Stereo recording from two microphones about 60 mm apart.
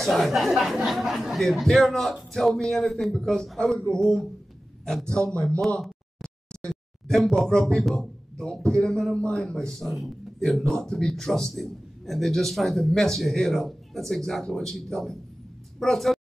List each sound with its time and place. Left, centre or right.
0.0 s a man's voice: centre
5.8 s a sound: centre
7.9 s speech: centre
9.7 s a man's voice: centre